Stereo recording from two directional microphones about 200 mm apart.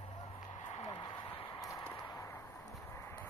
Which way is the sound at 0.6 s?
30° left (ahead or behind).